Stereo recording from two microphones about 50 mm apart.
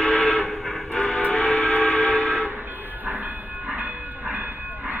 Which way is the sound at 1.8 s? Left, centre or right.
Centre.